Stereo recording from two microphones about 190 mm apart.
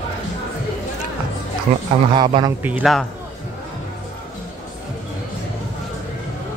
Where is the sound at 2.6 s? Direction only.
5° right (ahead or behind).